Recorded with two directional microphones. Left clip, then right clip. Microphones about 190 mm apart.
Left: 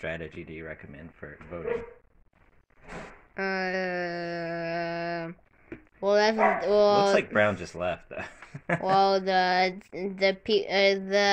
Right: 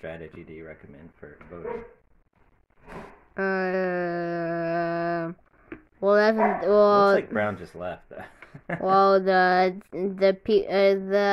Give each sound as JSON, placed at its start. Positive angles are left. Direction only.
{"t": 0.0, "sound": "speech", "side_deg": 40}
{"t": 3.3, "sound": "a sound", "side_deg": -35}
{"t": 5.9, "sound": "speech", "side_deg": -45}
{"t": 7.3, "sound": "speech", "side_deg": 35}
{"t": 8.8, "sound": "speech", "side_deg": -45}